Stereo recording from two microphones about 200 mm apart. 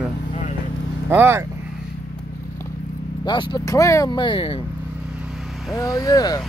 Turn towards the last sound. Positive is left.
turn(degrees=20)  # may be behind; listen again after turning